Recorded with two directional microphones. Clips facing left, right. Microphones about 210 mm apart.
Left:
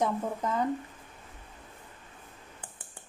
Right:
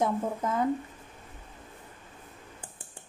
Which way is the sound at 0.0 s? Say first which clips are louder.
Right 1 dB; 5° right (ahead or behind).